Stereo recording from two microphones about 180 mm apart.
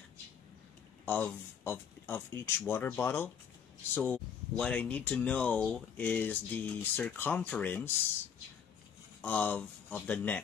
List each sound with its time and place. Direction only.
1.0 s speech: 10° left (ahead or behind)
9.2 s speech: 10° left (ahead or behind)